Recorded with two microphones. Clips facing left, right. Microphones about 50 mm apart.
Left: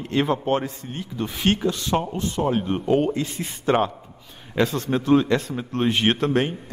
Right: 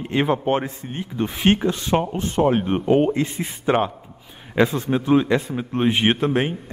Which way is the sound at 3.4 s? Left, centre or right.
Centre.